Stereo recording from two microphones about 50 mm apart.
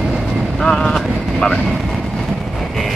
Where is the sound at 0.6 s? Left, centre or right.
Centre.